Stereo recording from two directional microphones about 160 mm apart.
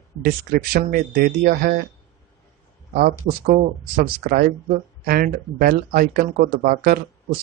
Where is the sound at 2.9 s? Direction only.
55° right (ahead or behind).